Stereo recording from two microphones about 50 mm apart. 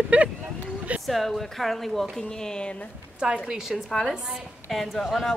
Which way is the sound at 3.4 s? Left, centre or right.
Centre.